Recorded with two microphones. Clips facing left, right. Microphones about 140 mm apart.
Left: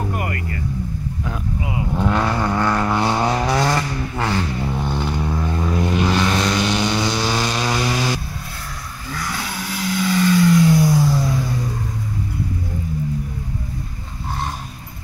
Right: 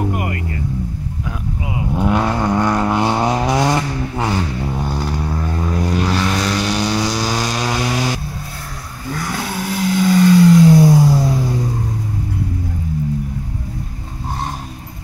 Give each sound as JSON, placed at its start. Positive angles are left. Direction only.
{"t": 0.0, "sound": "vehicle", "side_deg": -20}
{"t": 1.8, "sound": "vehicle", "side_deg": -15}
{"t": 7.5, "sound": "a sound", "side_deg": -5}
{"t": 9.5, "sound": "vehicle", "side_deg": -55}
{"t": 9.8, "sound": "vehicle", "side_deg": -35}